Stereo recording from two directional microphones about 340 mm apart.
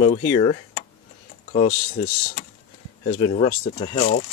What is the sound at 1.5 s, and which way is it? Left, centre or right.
Speech, left.